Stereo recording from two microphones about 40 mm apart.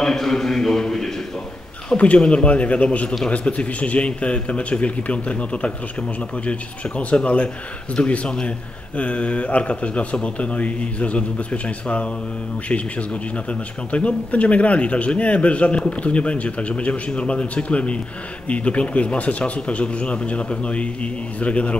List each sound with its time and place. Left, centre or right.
0.0 s a man's voice: centre
2.0 s a man's voice: left